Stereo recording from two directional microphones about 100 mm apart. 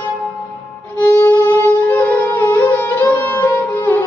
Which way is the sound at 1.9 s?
15° left (ahead or behind).